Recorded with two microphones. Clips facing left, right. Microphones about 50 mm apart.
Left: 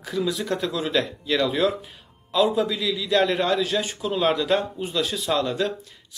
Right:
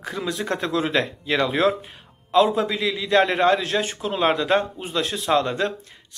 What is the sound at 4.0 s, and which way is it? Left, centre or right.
Speech, right.